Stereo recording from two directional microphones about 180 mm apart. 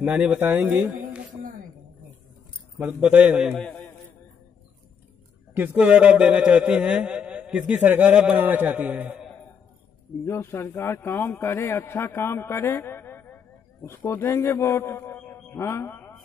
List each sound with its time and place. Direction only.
0.0 s a man's voice: 5° right (ahead or behind)
2.8 s a man's voice: 10° right (ahead or behind)
3.5 s a man's voice: 5° left (ahead or behind)
5.5 s a man's voice: 10° right (ahead or behind)
10.2 s a man's voice: 15° left (ahead or behind)